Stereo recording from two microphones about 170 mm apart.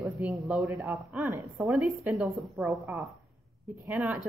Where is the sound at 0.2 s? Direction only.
Centre (ahead or behind).